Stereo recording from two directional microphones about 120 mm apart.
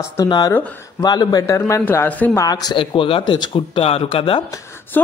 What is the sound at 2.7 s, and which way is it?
Speech, 45° left (ahead or behind).